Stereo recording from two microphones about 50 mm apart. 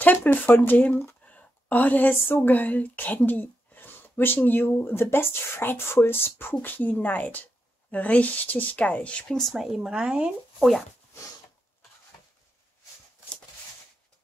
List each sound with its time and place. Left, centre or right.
0.0 s speech: left
3.3 s a sound: left
4.2 s speech: left
6.6 s speech: left
9.8 s speech: centre